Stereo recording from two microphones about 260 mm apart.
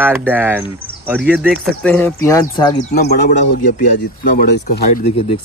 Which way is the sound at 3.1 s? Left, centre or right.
Left.